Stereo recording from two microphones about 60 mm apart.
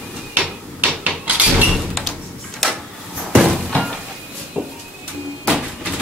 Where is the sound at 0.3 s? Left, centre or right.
Right.